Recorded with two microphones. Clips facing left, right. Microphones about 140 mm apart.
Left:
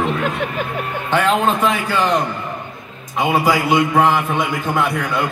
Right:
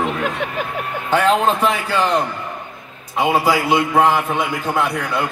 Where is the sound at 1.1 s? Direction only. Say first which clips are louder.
Right 1 dB; 35° right (ahead or behind).